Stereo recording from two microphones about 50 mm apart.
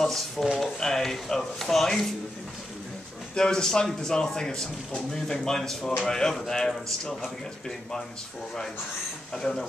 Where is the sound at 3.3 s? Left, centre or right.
Centre.